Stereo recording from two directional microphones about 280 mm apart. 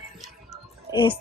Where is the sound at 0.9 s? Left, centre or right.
Centre.